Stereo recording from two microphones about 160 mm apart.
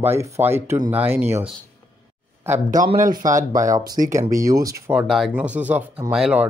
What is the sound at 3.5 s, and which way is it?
Speech, 20° right (ahead or behind).